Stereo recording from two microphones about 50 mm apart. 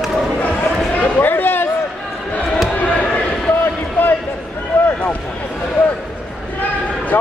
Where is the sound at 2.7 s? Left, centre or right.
Left.